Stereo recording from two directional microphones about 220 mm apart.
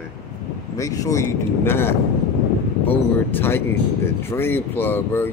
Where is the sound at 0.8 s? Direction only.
15° left (ahead or behind).